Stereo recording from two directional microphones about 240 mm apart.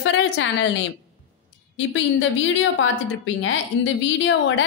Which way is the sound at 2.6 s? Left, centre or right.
Left.